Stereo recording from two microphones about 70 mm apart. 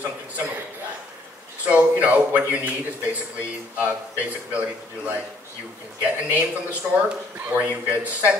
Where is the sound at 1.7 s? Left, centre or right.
Right.